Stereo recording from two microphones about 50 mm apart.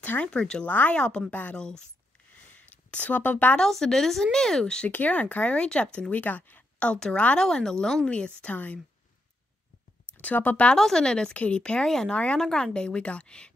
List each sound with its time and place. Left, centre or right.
0.0 s speech: left
0.3 s speech: centre
0.7 s speech: left
0.9 s a woman's voice: left
1.3 s speech: left
1.6 s speech: centre
2.6 s speech: left
3.5 s speech: centre
4.8 s speech: left
7.3 s speech: centre
8.5 s speech: left
10.2 s speech: left
10.8 s a woman's voice: centre